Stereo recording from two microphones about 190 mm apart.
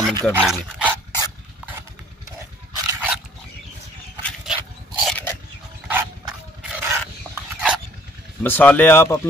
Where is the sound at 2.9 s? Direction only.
10° right (ahead or behind).